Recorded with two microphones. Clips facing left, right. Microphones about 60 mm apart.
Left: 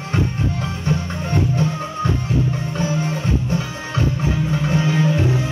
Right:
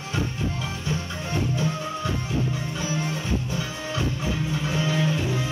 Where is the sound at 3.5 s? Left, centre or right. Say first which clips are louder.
Left 5 dB; left.